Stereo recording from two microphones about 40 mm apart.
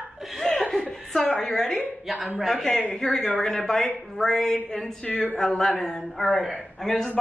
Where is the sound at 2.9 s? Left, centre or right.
Centre.